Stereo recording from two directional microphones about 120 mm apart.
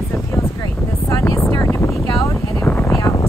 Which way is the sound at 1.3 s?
25° left (ahead or behind).